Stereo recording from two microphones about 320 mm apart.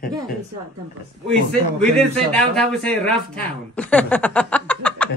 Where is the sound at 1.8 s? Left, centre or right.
Centre.